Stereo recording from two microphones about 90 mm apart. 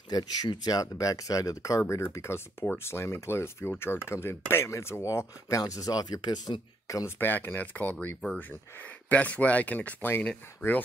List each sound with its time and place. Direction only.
0.1 s speech: 50° left (ahead or behind)
7.2 s speech: 20° left (ahead or behind)